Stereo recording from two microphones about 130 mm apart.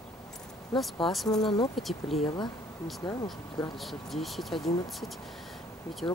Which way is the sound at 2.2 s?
35° left (ahead or behind).